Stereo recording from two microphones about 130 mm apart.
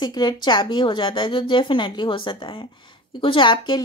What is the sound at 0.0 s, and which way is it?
A woman's voice, 35° left (ahead or behind).